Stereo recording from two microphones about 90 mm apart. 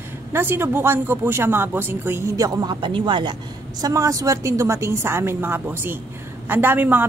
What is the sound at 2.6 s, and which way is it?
A woman's voice, 60° right (ahead or behind).